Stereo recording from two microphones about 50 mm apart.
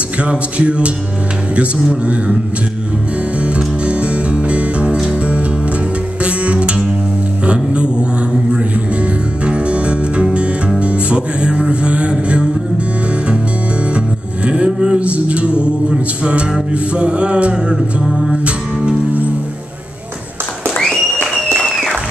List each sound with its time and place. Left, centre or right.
0.2 s speech: right
3.3 s music: right
7.4 s a sound: right
8.5 s music: right
13.9 s music: right